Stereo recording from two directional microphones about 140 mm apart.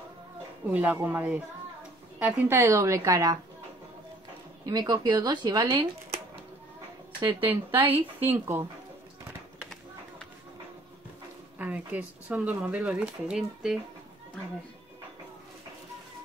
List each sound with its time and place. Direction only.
0.7 s a woman's voice: 15° right (ahead or behind)
4.6 s a woman's voice: 30° right (ahead or behind)
7.4 s speech: 15° right (ahead or behind)
11.5 s speech: 10° right (ahead or behind)